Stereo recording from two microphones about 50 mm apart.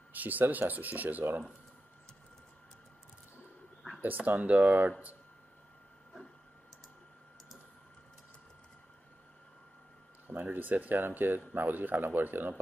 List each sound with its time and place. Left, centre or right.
0.1 s speech: right
4.0 s speech: right
10.2 s speech: right